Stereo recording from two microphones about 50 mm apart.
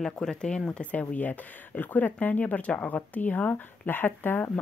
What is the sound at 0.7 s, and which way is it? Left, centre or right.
Speech, left.